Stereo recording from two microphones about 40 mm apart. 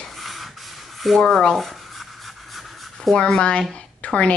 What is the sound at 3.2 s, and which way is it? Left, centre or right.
Speech, left.